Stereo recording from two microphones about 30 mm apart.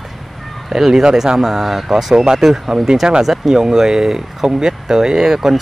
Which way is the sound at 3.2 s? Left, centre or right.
Centre.